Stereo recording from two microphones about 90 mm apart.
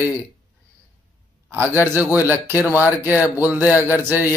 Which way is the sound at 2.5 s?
35° left (ahead or behind).